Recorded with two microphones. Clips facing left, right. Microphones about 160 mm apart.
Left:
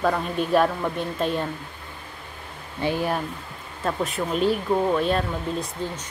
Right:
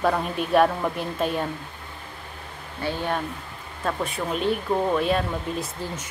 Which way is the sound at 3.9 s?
Centre (ahead or behind).